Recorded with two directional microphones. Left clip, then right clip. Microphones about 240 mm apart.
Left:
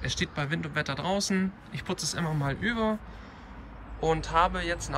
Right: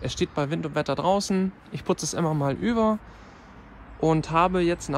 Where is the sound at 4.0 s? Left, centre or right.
Right.